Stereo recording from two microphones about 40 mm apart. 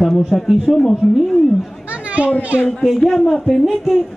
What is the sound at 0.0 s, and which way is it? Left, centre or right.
Speech, centre.